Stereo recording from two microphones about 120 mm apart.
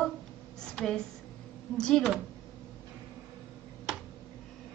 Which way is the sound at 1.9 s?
Centre (ahead or behind).